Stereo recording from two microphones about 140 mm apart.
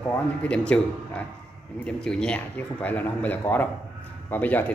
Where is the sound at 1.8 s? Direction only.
5° left (ahead or behind).